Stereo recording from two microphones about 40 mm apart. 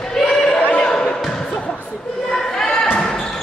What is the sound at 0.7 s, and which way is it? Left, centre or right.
Basketball bounce, left.